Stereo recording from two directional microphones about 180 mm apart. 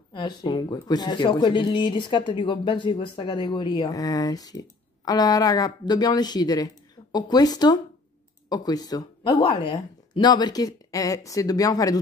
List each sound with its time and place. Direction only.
0.1 s speech: 25° left (ahead or behind)